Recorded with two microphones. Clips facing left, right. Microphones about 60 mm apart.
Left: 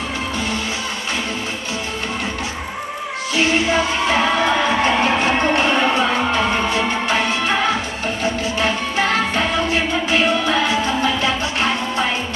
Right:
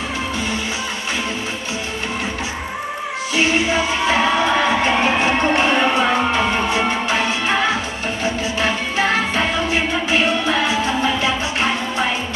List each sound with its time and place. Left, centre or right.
3.3 s music: right
8.5 s music: right